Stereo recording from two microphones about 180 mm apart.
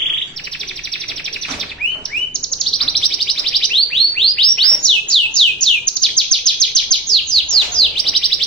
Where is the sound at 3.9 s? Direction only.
5° left (ahead or behind).